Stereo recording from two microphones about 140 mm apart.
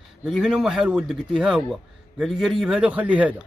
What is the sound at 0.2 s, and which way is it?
Speech, 5° right (ahead or behind).